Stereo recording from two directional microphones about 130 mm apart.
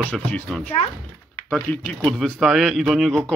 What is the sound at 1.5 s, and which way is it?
Speech, 10° left (ahead or behind).